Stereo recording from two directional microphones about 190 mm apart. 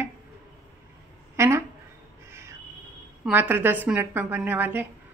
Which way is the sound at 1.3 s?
15° right (ahead or behind).